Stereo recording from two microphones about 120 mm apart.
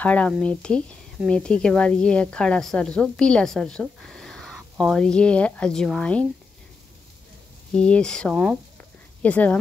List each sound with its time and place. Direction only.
0.0 s speech: 10° left (ahead or behind)
7.7 s speech: 10° left (ahead or behind)
9.2 s speech: 10° left (ahead or behind)